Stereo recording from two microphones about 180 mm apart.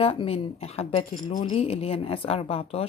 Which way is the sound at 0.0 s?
30° left (ahead or behind).